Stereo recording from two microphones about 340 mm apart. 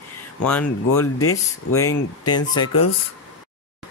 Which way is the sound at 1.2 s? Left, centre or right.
Left.